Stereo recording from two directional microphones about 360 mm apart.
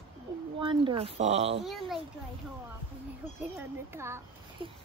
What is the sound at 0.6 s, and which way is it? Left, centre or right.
Speech, centre.